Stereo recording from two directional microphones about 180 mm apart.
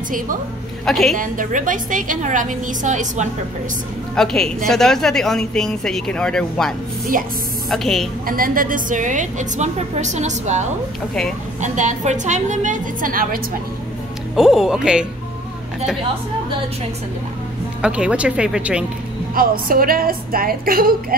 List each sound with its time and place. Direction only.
0.8 s speech: centre (ahead or behind)
1.1 s a woman's voice: 50° right (ahead or behind)
4.1 s a woman's voice: 5° left (ahead or behind)
7.7 s speech: centre (ahead or behind)
8.3 s a woman's voice: 50° right (ahead or behind)
14.3 s speech: centre (ahead or behind)
17.8 s speech: 5° right (ahead or behind)
19.3 s a woman's voice: 55° right (ahead or behind)